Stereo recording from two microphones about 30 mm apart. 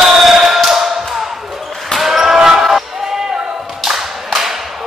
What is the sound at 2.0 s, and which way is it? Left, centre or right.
Basketball bounce, centre.